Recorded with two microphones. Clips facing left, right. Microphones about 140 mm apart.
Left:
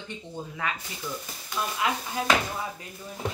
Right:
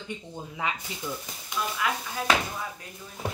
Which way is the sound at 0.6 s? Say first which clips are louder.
Right 2 dB; 20° right (ahead or behind).